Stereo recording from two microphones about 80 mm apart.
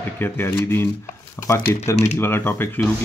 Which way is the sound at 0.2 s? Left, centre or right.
Left.